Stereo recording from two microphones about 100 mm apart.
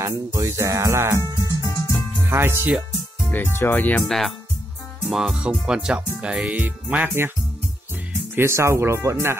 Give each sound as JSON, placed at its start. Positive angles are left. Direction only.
{"t": 0.0, "sound": "music", "side_deg": -30}
{"t": 2.2, "sound": "speech", "side_deg": -25}
{"t": 3.3, "sound": "speech", "side_deg": 20}
{"t": 4.0, "sound": "speech", "side_deg": 5}
{"t": 8.4, "sound": "speech", "side_deg": -25}